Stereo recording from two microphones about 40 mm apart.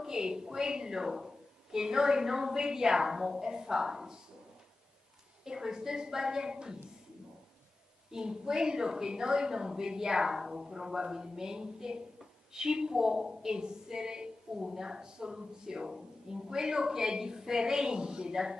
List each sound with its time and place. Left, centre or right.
0.0 s a woman's voice: centre
5.4 s a woman's voice: centre
8.1 s a woman's voice: centre